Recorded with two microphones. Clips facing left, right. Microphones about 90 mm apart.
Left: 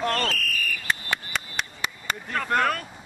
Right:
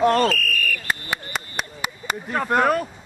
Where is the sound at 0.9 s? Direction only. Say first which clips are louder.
Right 1 dB; centre (ahead or behind).